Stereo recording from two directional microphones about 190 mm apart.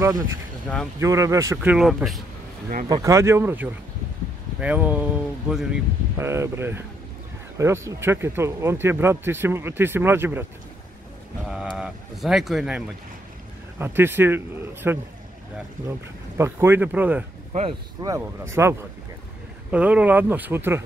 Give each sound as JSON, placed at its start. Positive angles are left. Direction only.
{"t": 0.9, "sound": "speech", "side_deg": -15}
{"t": 2.9, "sound": "speech", "side_deg": -15}
{"t": 11.7, "sound": "speech", "side_deg": -5}
{"t": 16.3, "sound": "speech", "side_deg": -15}
{"t": 17.5, "sound": "speech", "side_deg": -30}
{"t": 18.0, "sound": "speech", "side_deg": -15}